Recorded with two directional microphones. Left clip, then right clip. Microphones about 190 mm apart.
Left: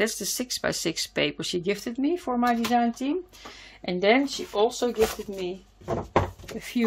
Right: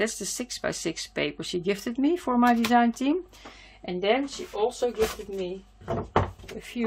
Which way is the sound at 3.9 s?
45° left (ahead or behind).